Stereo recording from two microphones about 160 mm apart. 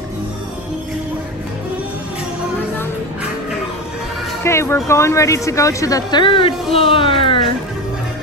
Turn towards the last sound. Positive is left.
turn(degrees=35)  # may be behind; listen again after turning